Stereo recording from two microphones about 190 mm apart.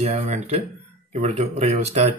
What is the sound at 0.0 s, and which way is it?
Speech, 40° right (ahead or behind).